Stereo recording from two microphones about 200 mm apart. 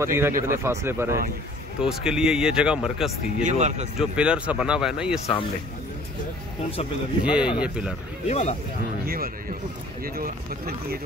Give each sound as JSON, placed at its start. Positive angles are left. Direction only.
{"t": 0.0, "sound": "speech", "side_deg": -15}
{"t": 3.4, "sound": "speech", "side_deg": -35}
{"t": 4.0, "sound": "speech", "side_deg": -5}
{"t": 7.2, "sound": "speech", "side_deg": -5}
{"t": 8.3, "sound": "speech", "side_deg": 35}
{"t": 9.0, "sound": "speech", "side_deg": -45}